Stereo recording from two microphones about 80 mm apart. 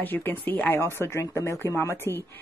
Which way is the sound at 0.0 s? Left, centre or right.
Left.